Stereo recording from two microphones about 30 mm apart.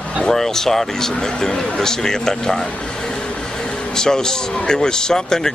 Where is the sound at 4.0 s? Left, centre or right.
Left.